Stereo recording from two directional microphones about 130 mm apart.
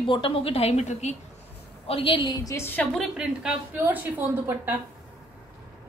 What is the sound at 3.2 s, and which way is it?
Speech, 5° right (ahead or behind).